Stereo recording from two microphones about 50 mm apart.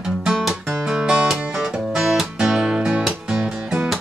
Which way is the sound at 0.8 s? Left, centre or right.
Centre.